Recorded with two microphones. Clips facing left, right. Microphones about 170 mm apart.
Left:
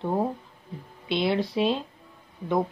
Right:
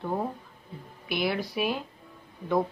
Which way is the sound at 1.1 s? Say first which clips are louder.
Left 4 dB; 25° left (ahead or behind).